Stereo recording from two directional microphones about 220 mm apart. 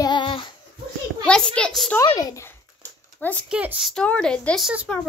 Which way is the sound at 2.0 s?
15° left (ahead or behind).